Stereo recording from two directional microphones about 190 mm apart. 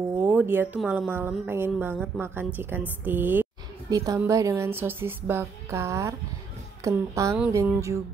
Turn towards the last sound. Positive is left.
turn(degrees=-15)  # may be behind; listen again after turning